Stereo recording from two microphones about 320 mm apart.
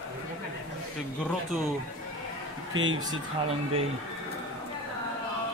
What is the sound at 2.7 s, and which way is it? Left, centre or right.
Speech, right.